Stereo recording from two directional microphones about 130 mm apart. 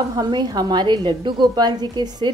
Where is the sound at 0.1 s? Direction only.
35° right (ahead or behind).